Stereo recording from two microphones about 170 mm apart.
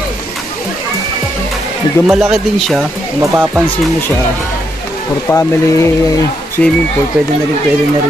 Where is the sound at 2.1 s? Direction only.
Centre (ahead or behind).